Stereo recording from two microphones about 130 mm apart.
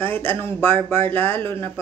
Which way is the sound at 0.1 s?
15° left (ahead or behind).